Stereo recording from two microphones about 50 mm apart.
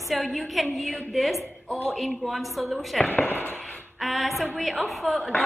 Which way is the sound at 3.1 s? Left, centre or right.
Left.